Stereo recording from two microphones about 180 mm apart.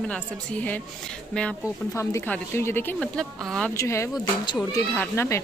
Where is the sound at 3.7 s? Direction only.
15° left (ahead or behind).